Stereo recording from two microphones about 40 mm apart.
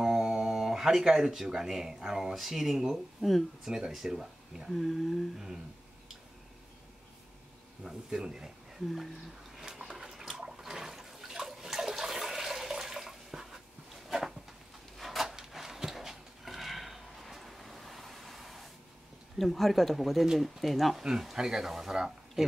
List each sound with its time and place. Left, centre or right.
0.2 s speech: centre
2.3 s speech: centre
3.6 s speech: centre
4.6 s speech: centre
7.8 s speech: centre
8.8 s speech: centre
9.6 s toilet flush: centre
14.0 s a sound: centre
19.3 s speech: centre